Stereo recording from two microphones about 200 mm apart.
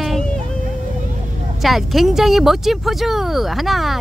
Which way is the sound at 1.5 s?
Centre (ahead or behind).